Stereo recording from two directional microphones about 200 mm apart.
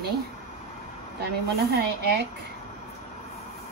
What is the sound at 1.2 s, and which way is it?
Speech, 50° right (ahead or behind).